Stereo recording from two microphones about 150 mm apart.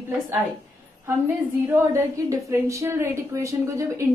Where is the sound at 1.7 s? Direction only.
20° right (ahead or behind).